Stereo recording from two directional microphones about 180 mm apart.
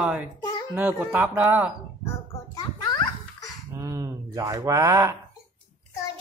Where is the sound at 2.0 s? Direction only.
20° left (ahead or behind).